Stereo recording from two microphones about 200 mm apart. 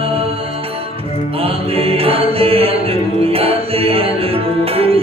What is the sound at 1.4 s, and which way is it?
Mantra, 30° right (ahead or behind).